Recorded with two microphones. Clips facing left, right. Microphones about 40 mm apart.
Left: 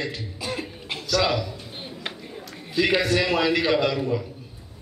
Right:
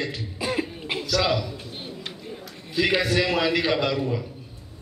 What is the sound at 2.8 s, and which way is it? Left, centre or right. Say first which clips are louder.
A man's voice: left 1 dB; centre.